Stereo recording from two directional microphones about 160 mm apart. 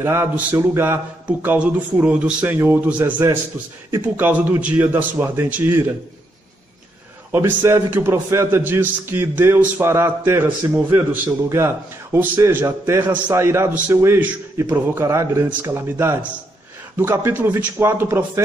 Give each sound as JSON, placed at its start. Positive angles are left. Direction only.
{"t": 0.0, "sound": "a man's voice", "side_deg": -15}
{"t": 7.3, "sound": "a man's voice", "side_deg": -15}